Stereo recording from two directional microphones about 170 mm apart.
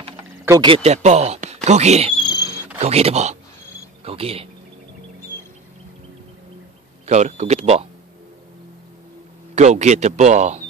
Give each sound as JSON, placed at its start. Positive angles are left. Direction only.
{"t": 0.5, "sound": "speech", "side_deg": -25}
{"t": 2.1, "sound": "a sound", "side_deg": 25}
{"t": 2.8, "sound": "speech", "side_deg": -40}
{"t": 7.1, "sound": "speech", "side_deg": -45}
{"t": 9.6, "sound": "speech", "side_deg": -45}